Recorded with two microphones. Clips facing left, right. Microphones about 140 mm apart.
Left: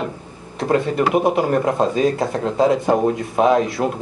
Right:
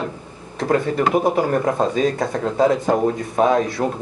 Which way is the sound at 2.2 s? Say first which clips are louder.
Even; 25° left (ahead or behind).